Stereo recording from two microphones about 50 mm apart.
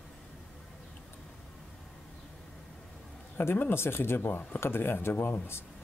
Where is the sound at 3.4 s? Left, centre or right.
Left.